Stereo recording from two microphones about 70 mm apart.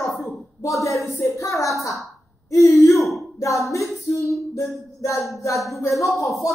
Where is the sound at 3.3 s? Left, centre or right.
Left.